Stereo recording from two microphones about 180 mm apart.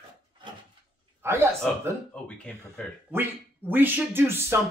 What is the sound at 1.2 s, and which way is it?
Speech, 15° right (ahead or behind).